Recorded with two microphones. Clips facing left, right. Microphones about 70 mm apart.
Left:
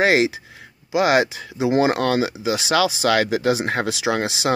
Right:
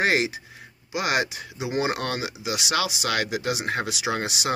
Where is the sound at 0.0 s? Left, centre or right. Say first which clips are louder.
Left 6 dB; left.